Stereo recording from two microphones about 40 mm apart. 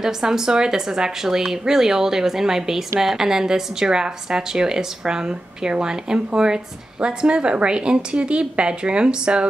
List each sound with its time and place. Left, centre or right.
0.0 s speech: centre